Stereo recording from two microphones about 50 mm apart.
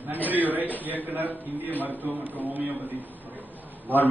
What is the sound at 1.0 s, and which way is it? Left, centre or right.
A man's voice, right.